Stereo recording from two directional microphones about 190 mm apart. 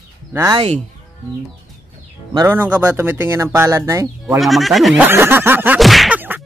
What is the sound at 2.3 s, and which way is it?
Speech, 15° right (ahead or behind).